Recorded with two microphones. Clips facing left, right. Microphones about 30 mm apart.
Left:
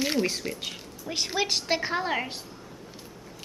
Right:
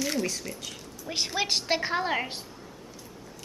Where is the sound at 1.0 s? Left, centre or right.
Centre.